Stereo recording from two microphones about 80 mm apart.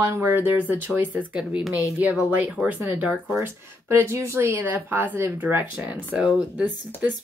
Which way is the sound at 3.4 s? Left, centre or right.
Right.